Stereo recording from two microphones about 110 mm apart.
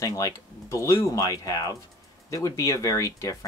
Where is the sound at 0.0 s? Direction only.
35° left (ahead or behind).